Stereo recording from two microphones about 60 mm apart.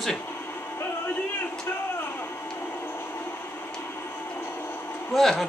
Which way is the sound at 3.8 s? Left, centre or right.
Left.